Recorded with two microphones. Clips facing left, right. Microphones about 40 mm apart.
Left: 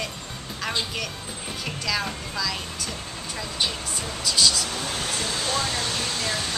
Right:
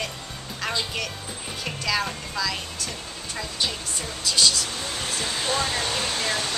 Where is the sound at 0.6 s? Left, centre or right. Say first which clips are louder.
Right 1 dB; centre.